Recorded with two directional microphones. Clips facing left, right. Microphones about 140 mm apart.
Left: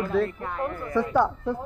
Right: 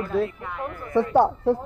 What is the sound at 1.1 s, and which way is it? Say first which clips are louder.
Speech: right 6 dB; 30° right (ahead or behind).